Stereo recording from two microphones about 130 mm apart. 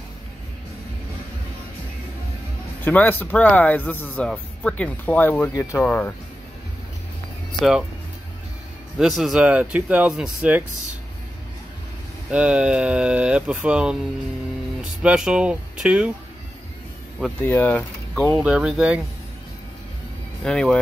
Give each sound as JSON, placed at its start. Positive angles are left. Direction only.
{"t": 2.8, "sound": "speech", "side_deg": 15}
{"t": 5.5, "sound": "speech", "side_deg": 20}
{"t": 8.9, "sound": "speech", "side_deg": 0}
{"t": 12.3, "sound": "speech", "side_deg": -10}
{"t": 17.4, "sound": "speech", "side_deg": 15}
{"t": 18.4, "sound": "speech", "side_deg": -10}
{"t": 20.4, "sound": "speech", "side_deg": 5}